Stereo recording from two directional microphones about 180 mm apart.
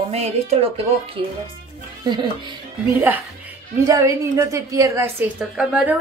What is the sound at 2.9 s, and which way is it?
A woman's voice, 15° right (ahead or behind).